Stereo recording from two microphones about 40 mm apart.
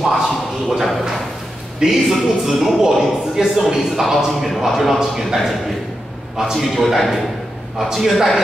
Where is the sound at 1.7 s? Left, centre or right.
Centre.